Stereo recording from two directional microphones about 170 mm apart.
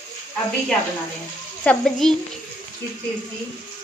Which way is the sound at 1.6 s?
5° left (ahead or behind).